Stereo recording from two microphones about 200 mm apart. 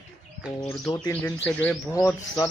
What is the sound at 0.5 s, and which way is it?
Speech, 15° left (ahead or behind).